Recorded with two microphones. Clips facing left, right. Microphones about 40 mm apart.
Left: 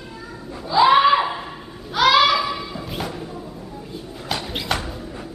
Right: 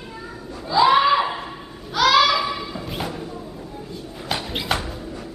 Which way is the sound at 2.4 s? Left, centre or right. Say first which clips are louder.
Even; centre.